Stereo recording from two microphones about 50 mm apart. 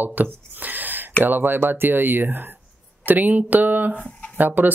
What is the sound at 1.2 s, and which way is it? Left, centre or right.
Speech, right.